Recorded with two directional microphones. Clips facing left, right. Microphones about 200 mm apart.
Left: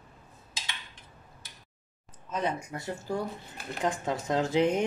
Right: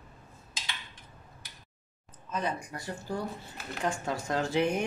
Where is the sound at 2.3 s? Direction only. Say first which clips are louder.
Left 2 dB; 25° left (ahead or behind).